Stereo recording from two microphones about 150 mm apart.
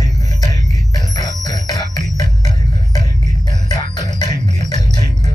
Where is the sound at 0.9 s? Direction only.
25° left (ahead or behind).